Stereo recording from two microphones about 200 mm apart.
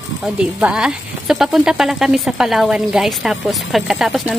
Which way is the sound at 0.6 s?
5° right (ahead or behind).